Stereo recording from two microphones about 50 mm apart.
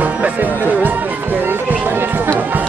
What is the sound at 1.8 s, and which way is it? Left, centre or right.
Run, right.